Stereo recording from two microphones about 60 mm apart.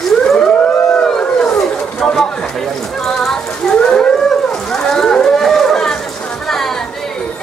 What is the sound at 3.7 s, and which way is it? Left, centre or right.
Whale vocalization, centre.